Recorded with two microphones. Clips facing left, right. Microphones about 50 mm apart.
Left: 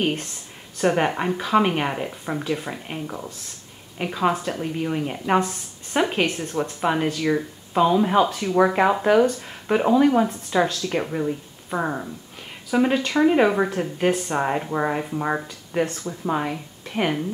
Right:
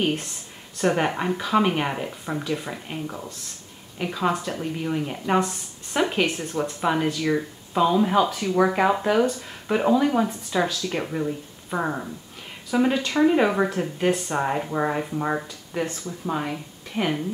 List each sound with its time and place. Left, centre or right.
0.0 s speech: centre
6.2 s speech: centre
6.8 s a woman's voice: centre